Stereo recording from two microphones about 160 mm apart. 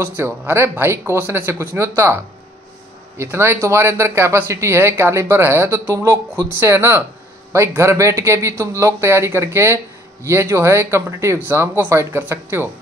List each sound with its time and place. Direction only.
0.0 s speech: 15° right (ahead or behind)
3.2 s speech: 15° right (ahead or behind)